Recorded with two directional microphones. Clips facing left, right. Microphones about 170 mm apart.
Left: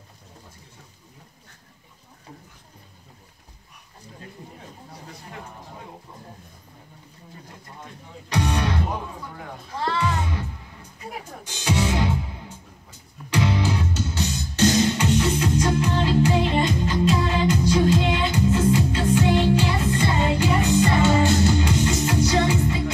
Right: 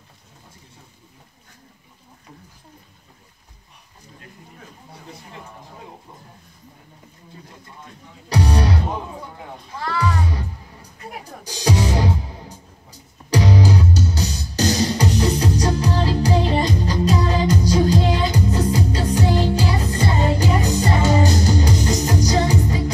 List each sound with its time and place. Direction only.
8.3 s music: 35° right (ahead or behind)
9.8 s music: 25° left (ahead or behind)
10.2 s music: 35° right (ahead or behind)